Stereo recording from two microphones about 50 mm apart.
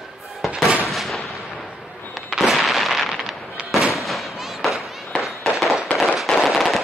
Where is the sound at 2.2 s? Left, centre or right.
Centre.